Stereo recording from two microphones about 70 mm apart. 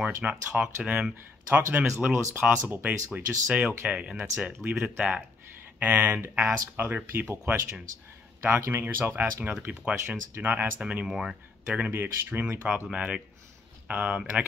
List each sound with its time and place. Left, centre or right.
0.0 s speech: right
8.8 s speech: right
10.8 s speech: centre
11.9 s speech: right
12.9 s speech: centre